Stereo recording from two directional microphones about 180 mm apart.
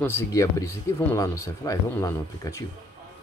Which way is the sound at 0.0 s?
15° left (ahead or behind).